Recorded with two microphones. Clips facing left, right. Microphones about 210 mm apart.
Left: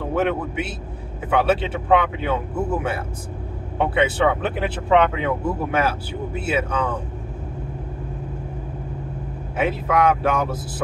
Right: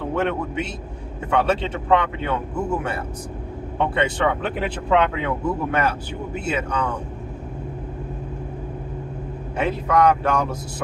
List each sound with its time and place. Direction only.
0.1 s speech: 5° left (ahead or behind)
3.8 s speech: 5° left (ahead or behind)
9.6 s speech: 5° left (ahead or behind)